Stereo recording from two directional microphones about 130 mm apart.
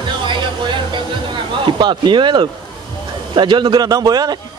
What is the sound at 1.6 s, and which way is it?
A man's voice, 35° right (ahead or behind).